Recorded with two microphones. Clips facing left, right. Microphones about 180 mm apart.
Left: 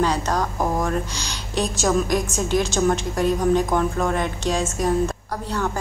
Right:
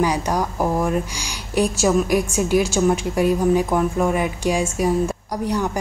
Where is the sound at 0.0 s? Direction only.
10° right (ahead or behind).